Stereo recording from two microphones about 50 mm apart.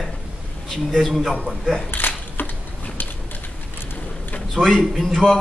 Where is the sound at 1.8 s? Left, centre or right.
Left.